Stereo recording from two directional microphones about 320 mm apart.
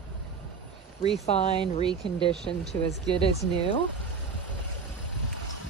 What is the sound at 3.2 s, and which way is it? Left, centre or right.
Speech, centre.